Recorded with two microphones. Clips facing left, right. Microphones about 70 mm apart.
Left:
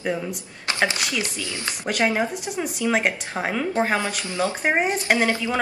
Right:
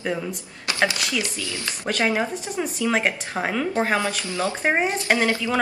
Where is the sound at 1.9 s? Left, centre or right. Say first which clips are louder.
Even; centre.